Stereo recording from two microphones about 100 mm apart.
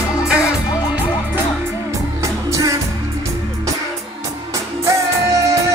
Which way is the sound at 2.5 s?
35° right (ahead or behind).